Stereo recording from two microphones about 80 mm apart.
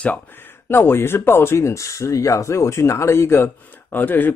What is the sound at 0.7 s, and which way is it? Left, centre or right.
Speech, left.